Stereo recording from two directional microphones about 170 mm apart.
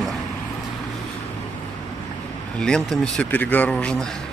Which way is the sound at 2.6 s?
5° left (ahead or behind).